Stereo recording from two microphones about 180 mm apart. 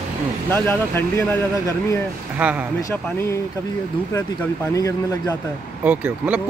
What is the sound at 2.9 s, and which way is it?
Speech, 15° left (ahead or behind).